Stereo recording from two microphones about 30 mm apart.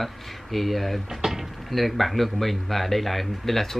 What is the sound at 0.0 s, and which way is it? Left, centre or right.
Speech, centre.